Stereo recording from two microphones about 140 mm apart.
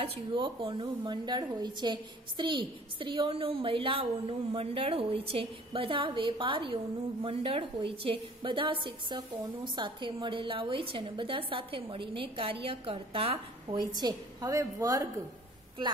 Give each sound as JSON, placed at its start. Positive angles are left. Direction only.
{"t": 0.0, "sound": "a woman's voice", "side_deg": -40}
{"t": 13.9, "sound": "a woman's voice", "side_deg": -25}